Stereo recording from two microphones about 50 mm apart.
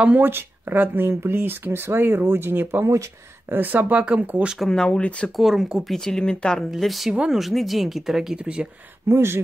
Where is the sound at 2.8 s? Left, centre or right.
Right.